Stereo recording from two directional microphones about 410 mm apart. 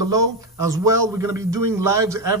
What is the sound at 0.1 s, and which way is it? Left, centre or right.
A man's voice, centre.